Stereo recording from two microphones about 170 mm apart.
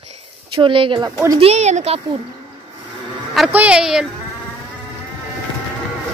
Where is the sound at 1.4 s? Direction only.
40° right (ahead or behind).